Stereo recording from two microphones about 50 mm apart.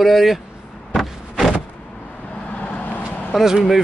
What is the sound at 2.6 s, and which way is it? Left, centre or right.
Vehicle, left.